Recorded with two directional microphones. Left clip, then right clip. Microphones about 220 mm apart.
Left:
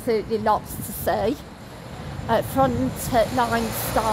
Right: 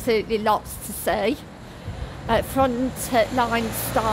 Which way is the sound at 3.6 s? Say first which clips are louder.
Even; 35° left (ahead or behind).